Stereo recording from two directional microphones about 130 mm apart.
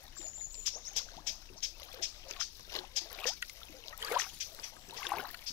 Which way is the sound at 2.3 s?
25° left (ahead or behind).